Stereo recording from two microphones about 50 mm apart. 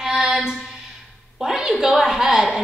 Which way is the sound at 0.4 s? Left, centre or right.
Centre.